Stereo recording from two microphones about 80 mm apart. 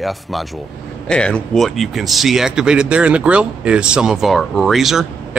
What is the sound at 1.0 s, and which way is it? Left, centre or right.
Speech, centre.